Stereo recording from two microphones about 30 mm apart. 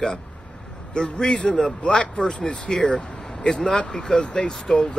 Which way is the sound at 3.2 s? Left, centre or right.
Centre.